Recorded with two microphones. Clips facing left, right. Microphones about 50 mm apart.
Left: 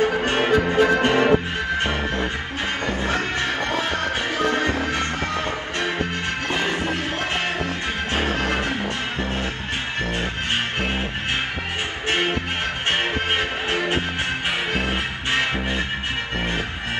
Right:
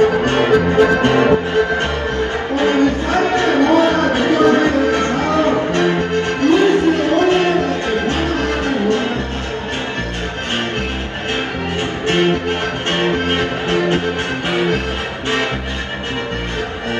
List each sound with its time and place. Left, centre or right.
0.0 s music: right
12.1 s music: right